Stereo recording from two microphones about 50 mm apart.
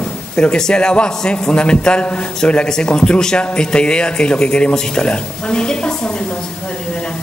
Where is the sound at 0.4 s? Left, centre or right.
Centre.